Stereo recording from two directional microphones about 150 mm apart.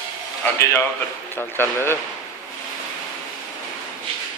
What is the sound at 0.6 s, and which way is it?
Speech, 15° left (ahead or behind).